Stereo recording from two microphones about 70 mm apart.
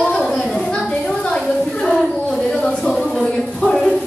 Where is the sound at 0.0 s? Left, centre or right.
Centre.